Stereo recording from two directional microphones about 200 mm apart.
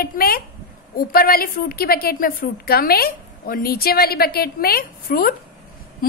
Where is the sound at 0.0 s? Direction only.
50° left (ahead or behind).